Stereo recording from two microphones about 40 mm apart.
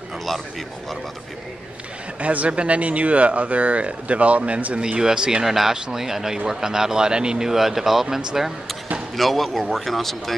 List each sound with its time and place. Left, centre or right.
2.1 s speech: right
4.7 s speech: right
5.5 s a man's voice: centre
9.1 s speech: centre